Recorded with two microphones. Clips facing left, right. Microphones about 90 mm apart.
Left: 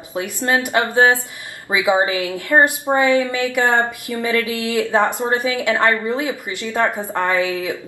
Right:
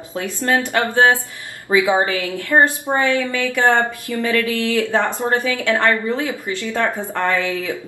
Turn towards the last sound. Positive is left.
turn(degrees=20)  # may be behind; listen again after turning